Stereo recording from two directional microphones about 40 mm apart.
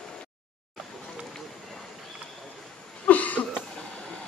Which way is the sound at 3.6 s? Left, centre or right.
Left.